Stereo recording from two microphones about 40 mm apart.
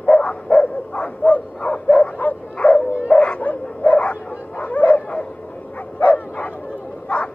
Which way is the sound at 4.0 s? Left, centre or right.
Left.